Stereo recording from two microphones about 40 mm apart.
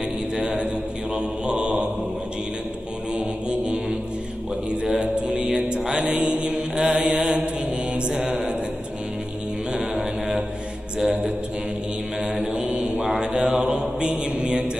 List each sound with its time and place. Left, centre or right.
0.4 s mantra: right
3.2 s music: right
5.0 s mantra: right
8.3 s a sound: centre
9.9 s a sound: centre
11.0 s music: centre
12.2 s mantra: right
12.9 s mantra: centre
13.2 s mantra: right